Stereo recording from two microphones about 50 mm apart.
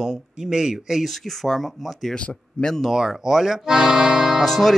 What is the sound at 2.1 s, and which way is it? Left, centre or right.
Speech, centre.